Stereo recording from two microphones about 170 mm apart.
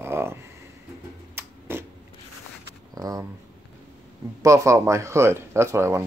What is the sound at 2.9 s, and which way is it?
Speech, 20° right (ahead or behind).